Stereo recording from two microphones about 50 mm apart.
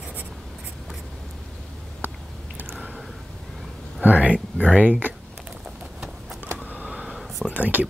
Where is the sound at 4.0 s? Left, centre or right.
Right.